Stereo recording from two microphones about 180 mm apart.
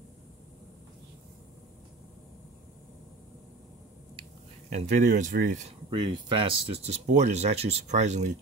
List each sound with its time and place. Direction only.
4.6 s speech: 45° right (ahead or behind)
5.9 s speech: 25° right (ahead or behind)